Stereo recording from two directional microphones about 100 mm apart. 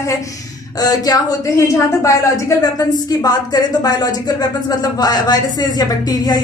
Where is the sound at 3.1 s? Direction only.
40° left (ahead or behind).